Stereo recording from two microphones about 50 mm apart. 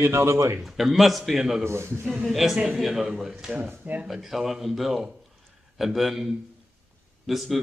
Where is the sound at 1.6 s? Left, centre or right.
Right.